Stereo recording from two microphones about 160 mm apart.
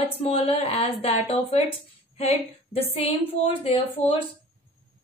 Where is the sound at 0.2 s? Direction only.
40° left (ahead or behind).